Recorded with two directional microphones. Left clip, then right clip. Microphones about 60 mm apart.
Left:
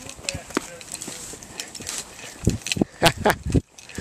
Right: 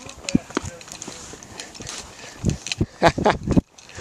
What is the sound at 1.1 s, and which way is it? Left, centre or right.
Horse, centre.